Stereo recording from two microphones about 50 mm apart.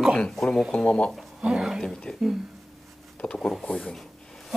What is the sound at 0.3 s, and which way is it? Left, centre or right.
Speech, centre.